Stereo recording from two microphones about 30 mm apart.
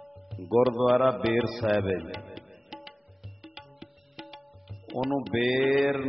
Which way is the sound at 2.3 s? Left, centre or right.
Centre.